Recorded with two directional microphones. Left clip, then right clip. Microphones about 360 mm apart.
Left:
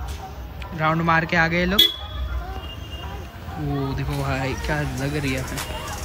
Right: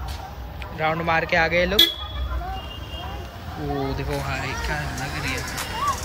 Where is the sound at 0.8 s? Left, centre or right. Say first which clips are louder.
Left 2 dB; centre.